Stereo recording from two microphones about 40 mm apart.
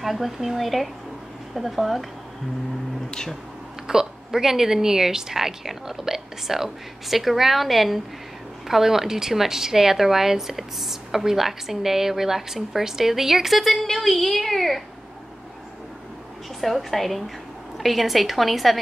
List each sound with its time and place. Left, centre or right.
0.0 s a woman's voice: centre
3.1 s a sound: centre
3.8 s a woman's voice: centre
16.6 s a woman's voice: centre